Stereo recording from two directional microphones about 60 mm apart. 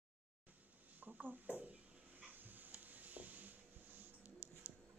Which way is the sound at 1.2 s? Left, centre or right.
Right.